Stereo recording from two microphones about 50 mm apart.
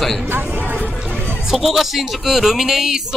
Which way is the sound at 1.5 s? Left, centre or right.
Centre.